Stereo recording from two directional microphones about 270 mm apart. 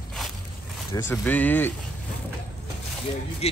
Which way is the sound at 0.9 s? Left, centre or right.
Centre.